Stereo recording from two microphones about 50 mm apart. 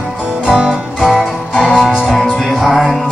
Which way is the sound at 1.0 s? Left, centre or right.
Centre.